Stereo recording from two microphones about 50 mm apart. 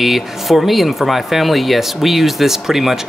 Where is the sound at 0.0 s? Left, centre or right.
Centre.